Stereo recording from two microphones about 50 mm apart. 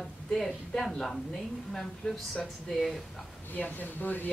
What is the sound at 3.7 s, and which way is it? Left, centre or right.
Speech, left.